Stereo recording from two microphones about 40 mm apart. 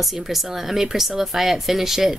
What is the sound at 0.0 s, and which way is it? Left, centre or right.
A woman's voice, centre.